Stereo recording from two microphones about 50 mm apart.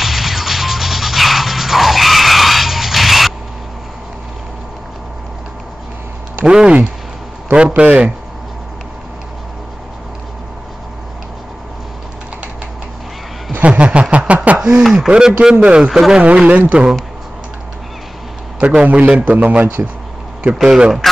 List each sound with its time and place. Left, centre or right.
0.0 s music: centre
6.4 s a man's voice: centre
13.5 s a sound: right
14.6 s a man's voice: centre
15.9 s speech: centre
16.4 s a man's voice: right
18.6 s a man's voice: right
20.6 s speech: centre